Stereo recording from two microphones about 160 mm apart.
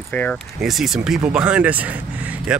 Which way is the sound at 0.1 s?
10° left (ahead or behind).